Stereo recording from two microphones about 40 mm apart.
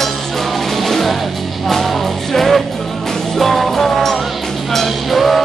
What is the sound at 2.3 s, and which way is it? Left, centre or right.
Music, centre.